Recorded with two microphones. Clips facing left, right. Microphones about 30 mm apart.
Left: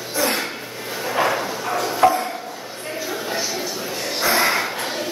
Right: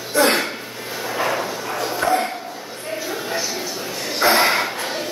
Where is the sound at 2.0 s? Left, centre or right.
Left.